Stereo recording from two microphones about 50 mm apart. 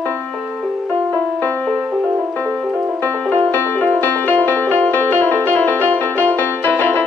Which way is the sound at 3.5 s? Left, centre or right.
Left.